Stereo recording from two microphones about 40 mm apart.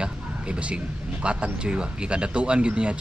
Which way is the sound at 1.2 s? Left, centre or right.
Right.